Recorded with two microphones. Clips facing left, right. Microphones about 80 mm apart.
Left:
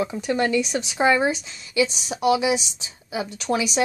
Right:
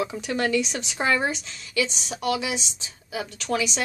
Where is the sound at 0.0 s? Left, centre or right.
Centre.